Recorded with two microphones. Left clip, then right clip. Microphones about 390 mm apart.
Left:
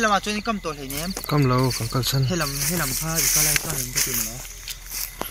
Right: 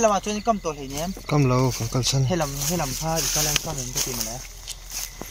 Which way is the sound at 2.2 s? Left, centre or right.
Right.